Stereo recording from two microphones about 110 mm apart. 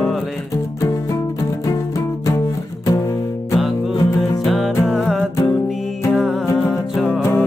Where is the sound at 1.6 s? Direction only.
30° left (ahead or behind).